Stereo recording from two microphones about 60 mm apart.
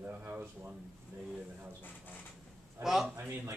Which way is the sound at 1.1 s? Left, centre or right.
Right.